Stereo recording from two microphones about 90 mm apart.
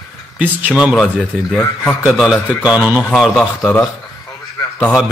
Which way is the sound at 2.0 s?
10° right (ahead or behind).